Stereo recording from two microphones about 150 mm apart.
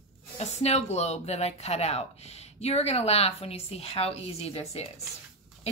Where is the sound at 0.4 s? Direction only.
45° left (ahead or behind).